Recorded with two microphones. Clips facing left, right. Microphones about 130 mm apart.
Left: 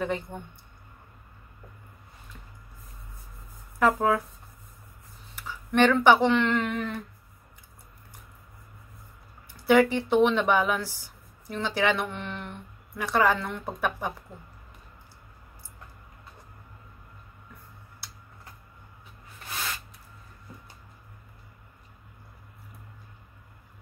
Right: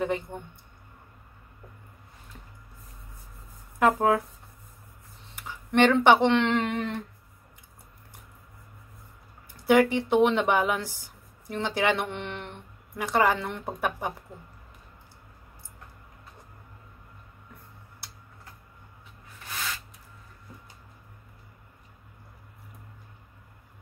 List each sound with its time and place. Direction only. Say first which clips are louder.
0.0 s a woman's voice: right 1 dB; 20° right (ahead or behind)
3.8 s speech: right 1 dB; 20° right (ahead or behind)
5.3 s a sound: right 1 dB; 20° right (ahead or behind)
6.0 s speech: even; 20° right (ahead or behind)
9.7 s a woman's voice: even; 15° right (ahead or behind)